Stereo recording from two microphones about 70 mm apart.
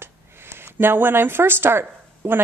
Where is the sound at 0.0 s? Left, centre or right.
Right.